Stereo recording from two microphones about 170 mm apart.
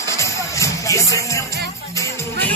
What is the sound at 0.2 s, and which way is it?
Music, 20° left (ahead or behind).